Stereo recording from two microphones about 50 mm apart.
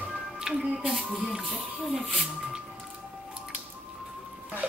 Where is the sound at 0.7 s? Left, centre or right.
Centre.